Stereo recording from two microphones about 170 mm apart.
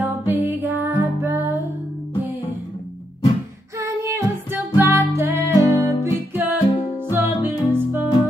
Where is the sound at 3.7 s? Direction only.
15° right (ahead or behind).